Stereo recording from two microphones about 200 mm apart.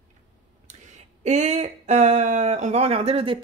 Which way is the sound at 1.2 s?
35° right (ahead or behind).